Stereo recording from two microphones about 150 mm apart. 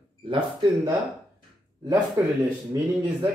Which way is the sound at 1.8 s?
30° right (ahead or behind).